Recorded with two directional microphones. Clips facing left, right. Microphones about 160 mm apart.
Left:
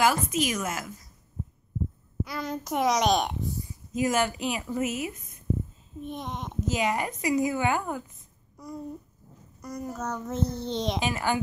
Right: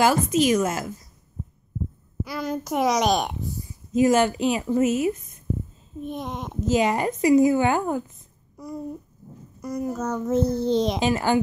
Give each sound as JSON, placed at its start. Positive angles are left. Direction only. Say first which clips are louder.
{"t": 0.0, "sound": "speech", "louder": "right 5 dB", "side_deg": -30}
{"t": 2.2, "sound": "child singing", "louder": "right 6 dB", "side_deg": -5}
{"t": 3.9, "sound": "speech", "louder": "right 7 dB", "side_deg": -25}
{"t": 6.0, "sound": "child singing", "louder": "right 4 dB", "side_deg": -5}
{"t": 6.6, "sound": "speech", "louder": "right 6 dB", "side_deg": -30}
{"t": 8.6, "sound": "babbling", "louder": "right 5 dB", "side_deg": -5}
{"t": 9.6, "sound": "child singing", "louder": "right 7 dB", "side_deg": -5}
{"t": 11.0, "sound": "speech", "louder": "right 6 dB", "side_deg": -30}